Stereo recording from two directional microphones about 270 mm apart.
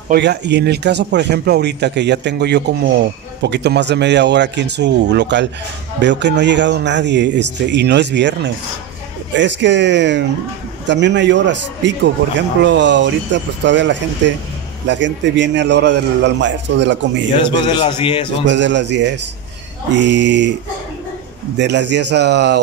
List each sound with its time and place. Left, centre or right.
0.1 s speech: right
17.4 s a man's voice: centre
18.5 s speech: right
21.5 s speech: right